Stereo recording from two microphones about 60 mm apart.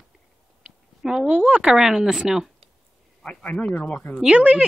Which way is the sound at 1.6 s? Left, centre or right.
Centre.